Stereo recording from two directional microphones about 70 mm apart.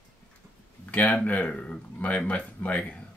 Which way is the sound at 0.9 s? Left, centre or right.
Centre.